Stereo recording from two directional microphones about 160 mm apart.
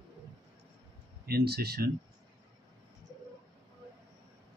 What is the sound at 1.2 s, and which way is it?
Speech, 85° right.